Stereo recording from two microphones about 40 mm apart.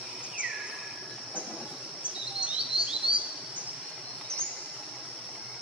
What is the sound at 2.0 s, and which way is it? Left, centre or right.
Chirp, right.